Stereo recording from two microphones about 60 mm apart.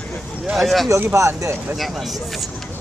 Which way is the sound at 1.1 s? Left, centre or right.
Right.